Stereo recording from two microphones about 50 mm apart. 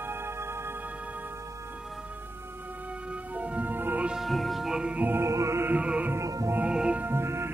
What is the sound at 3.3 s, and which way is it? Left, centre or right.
Music, right.